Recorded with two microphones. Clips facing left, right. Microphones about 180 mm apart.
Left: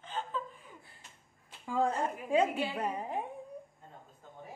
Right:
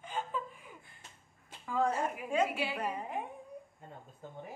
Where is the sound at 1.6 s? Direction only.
30° left (ahead or behind).